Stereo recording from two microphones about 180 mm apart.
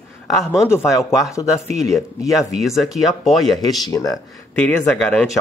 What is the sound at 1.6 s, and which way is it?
Speech, 40° right (ahead or behind).